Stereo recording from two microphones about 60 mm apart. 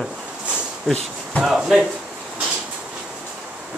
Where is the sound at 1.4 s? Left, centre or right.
Centre.